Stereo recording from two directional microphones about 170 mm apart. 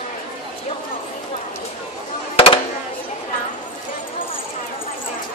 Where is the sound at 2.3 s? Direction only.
35° left (ahead or behind).